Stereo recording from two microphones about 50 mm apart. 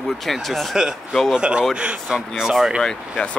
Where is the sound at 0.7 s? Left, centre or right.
Centre.